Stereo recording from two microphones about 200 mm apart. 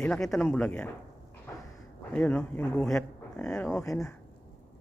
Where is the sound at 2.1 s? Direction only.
5° left (ahead or behind).